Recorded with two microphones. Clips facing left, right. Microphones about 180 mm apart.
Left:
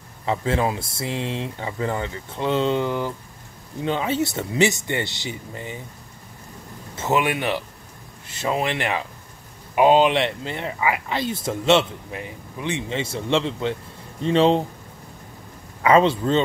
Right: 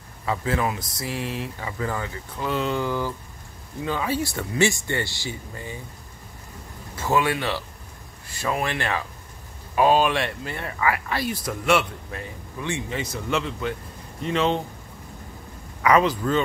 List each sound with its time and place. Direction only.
0.2 s speech: 25° left (ahead or behind)
7.0 s speech: 20° left (ahead or behind)
15.8 s speech: 25° left (ahead or behind)